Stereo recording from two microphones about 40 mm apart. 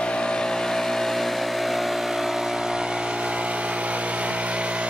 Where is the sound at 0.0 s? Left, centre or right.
Left.